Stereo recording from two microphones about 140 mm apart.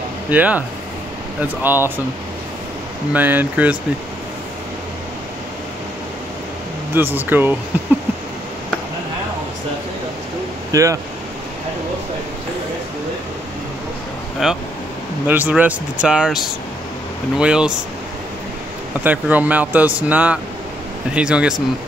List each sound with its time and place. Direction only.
0.3 s speech: 10° right (ahead or behind)
3.1 s speech: 15° right (ahead or behind)
6.9 s speech: 15° right (ahead or behind)
10.7 s speech: 25° right (ahead or behind)
14.4 s speech: 5° right (ahead or behind)
19.0 s speech: 10° right (ahead or behind)